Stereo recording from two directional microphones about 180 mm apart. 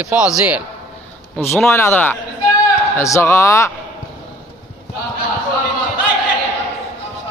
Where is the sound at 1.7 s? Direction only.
10° left (ahead or behind).